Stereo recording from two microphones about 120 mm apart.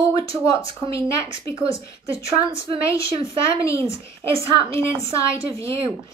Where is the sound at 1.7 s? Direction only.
25° left (ahead or behind).